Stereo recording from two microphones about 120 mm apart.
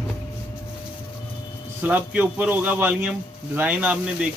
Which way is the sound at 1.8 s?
15° right (ahead or behind).